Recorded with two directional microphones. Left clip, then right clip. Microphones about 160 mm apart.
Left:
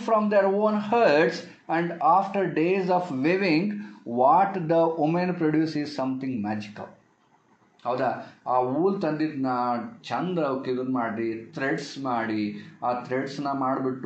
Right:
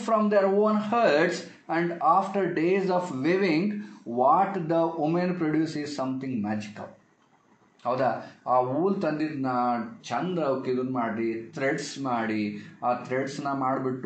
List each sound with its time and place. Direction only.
0.0 s speech: 25° left (ahead or behind)
7.8 s speech: 5° left (ahead or behind); by 13.7 s 20° left (ahead or behind)